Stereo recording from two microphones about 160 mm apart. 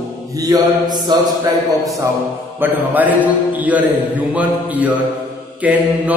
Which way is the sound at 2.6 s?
10° right (ahead or behind).